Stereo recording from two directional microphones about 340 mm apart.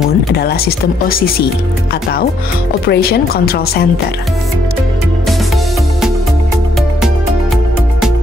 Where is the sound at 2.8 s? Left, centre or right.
Left.